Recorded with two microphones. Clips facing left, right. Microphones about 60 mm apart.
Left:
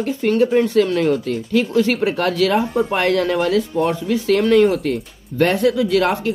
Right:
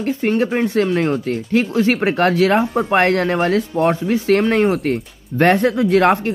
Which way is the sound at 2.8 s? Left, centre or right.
Right.